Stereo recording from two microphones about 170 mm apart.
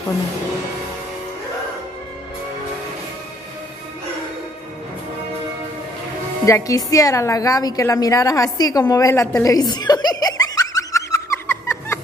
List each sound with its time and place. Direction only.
6.4 s a woman's voice: 20° left (ahead or behind)